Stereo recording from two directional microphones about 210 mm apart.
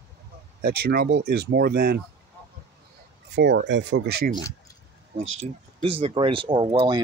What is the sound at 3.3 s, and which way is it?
Speech, 55° right (ahead or behind).